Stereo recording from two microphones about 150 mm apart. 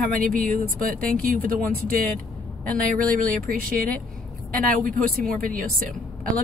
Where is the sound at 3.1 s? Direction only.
70° right (ahead or behind).